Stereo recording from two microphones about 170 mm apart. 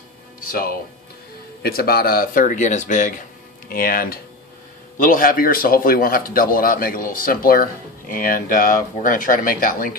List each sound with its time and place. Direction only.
0.5 s a man's voice: 55° left (ahead or behind)
3.6 s a man's voice: 60° left (ahead or behind)